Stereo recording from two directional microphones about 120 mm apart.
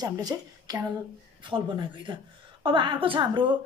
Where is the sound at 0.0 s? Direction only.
30° right (ahead or behind).